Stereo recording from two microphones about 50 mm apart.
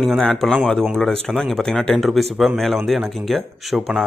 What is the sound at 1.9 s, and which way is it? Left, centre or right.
Speech, centre.